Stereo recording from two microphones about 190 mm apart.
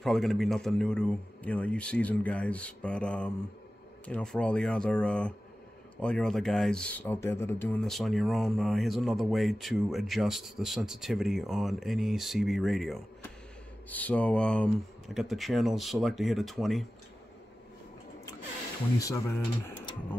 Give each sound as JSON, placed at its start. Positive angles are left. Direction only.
{"t": 0.0, "sound": "speech", "side_deg": 0}
{"t": 18.9, "sound": "speech", "side_deg": 15}